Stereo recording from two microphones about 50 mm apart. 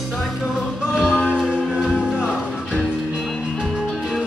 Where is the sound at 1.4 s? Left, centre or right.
Centre.